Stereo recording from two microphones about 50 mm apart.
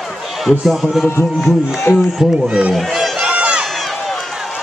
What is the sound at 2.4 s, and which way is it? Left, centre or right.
Speech, right.